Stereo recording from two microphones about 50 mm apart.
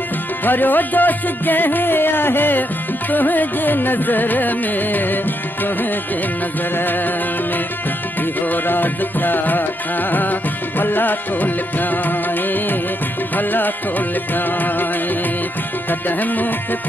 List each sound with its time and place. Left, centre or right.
0.5 s music: left
8.5 s music: left
10.8 s music: left
13.4 s music: left
15.9 s music: left